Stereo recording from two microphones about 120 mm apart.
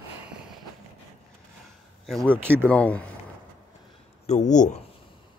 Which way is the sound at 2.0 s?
Centre (ahead or behind).